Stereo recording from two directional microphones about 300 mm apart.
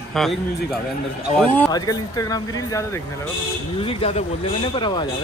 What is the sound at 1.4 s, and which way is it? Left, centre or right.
A man's voice, centre.